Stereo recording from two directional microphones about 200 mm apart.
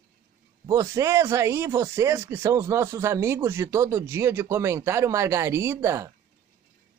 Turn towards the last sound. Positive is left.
turn(degrees=-15)  # may be behind; listen again after turning